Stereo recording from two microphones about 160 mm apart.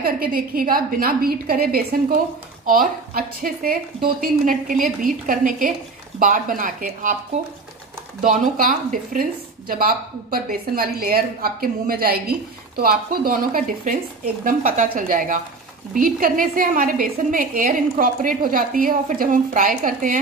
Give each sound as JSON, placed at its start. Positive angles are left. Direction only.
{"t": 0.0, "sound": "a woman's voice", "side_deg": -65}
{"t": 8.2, "sound": "a woman's voice", "side_deg": -55}